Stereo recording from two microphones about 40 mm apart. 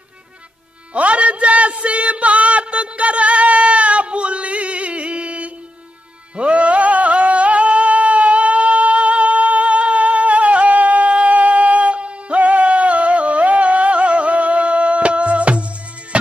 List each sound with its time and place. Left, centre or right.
0.9 s music: right